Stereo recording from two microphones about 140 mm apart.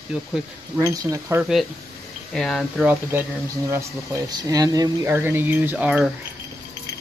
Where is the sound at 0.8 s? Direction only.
25° right (ahead or behind).